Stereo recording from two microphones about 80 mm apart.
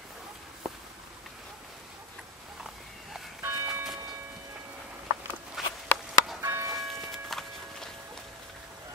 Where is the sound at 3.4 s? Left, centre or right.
Right.